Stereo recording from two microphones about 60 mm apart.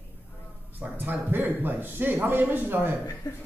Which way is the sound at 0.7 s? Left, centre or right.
Right.